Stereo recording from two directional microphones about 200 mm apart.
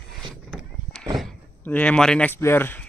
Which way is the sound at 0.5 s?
Centre (ahead or behind).